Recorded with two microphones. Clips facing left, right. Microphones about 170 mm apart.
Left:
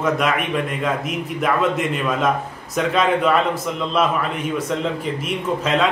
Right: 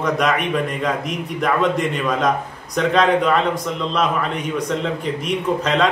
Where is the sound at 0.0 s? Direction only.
5° left (ahead or behind).